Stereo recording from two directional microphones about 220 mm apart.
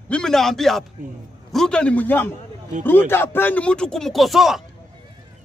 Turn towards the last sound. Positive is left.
turn(degrees=0)  # may be behind; listen again after turning